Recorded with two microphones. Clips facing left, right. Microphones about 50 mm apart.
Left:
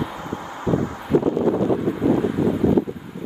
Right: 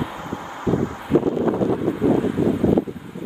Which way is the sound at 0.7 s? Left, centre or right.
Right.